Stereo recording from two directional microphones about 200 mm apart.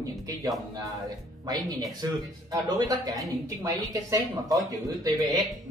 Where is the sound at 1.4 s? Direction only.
20° right (ahead or behind).